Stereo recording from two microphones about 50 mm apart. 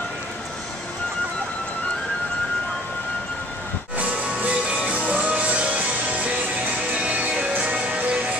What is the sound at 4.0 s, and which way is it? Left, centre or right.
Music, right.